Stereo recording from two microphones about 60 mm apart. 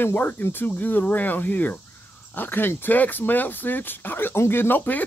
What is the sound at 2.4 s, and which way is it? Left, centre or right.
Speech, left.